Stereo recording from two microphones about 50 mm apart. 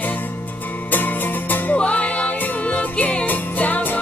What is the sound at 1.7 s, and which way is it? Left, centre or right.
Music, left.